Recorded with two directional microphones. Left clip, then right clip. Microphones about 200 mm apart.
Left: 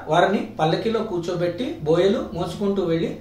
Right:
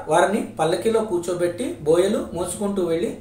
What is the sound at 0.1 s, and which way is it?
Speech, 25° right (ahead or behind).